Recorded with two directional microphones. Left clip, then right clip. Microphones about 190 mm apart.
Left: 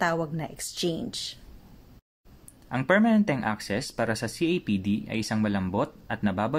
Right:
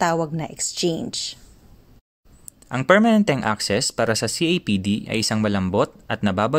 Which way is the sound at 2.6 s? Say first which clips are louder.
Right 7 dB; 45° right (ahead or behind).